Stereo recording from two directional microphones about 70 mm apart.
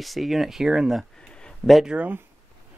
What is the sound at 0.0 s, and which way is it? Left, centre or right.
Speech, centre.